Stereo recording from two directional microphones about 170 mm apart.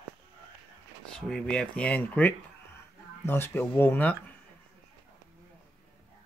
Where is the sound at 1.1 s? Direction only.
5° left (ahead or behind).